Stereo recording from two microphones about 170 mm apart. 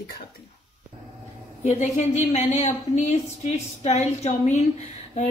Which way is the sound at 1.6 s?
45° left (ahead or behind).